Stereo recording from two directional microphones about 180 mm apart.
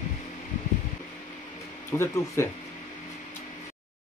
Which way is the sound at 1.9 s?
15° left (ahead or behind).